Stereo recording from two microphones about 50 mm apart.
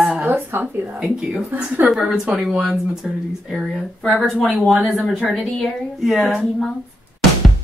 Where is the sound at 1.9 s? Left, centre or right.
Centre.